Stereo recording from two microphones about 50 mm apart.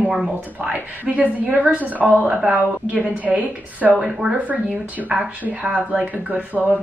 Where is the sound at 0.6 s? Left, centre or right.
Right.